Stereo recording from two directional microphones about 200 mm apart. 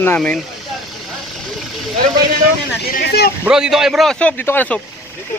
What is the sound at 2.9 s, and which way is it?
Speech, 50° left (ahead or behind).